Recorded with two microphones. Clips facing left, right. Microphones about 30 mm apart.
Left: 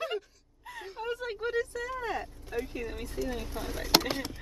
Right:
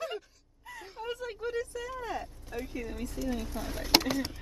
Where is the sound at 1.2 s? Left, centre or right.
Left.